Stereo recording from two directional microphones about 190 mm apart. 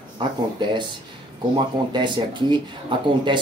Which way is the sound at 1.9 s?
25° right (ahead or behind).